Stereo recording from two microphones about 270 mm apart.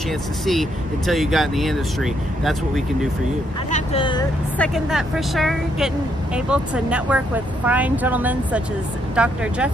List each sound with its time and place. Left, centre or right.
0.5 s speech: centre
3.7 s speech: centre
4.6 s speech: centre